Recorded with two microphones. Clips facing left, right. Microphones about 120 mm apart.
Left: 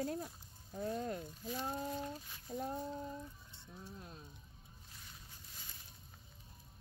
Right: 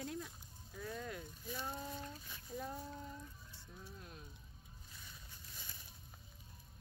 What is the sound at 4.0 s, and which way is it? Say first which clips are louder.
Music: left 2 dB; 25° left (ahead or behind).